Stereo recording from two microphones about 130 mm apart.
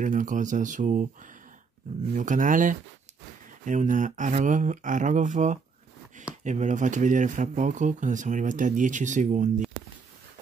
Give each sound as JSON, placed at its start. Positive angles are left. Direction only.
{"t": 0.0, "sound": "speech", "side_deg": -80}
{"t": 3.6, "sound": "speech", "side_deg": -75}